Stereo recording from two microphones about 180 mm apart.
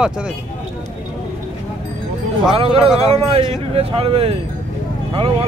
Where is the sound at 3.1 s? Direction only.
35° right (ahead or behind).